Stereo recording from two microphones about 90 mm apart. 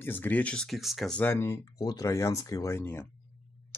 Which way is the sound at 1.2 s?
30° left (ahead or behind).